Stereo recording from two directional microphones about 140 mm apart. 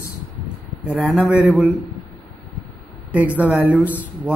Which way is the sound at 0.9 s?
10° right (ahead or behind).